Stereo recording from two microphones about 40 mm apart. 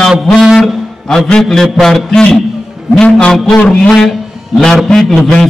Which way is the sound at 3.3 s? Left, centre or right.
Centre.